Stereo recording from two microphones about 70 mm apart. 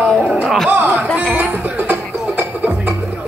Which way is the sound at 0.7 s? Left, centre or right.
Right.